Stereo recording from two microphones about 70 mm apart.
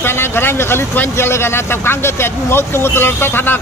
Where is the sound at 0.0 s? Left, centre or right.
Left.